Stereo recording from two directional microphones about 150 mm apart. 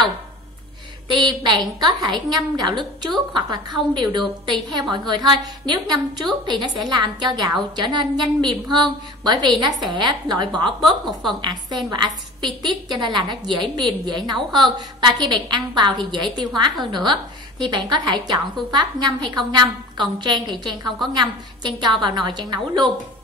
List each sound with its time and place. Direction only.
1.0 s a woman's voice: 30° right (ahead or behind)